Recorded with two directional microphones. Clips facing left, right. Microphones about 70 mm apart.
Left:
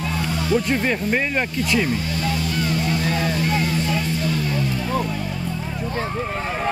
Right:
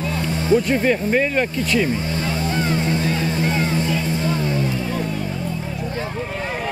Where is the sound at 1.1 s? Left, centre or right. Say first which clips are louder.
Right 3 dB; centre.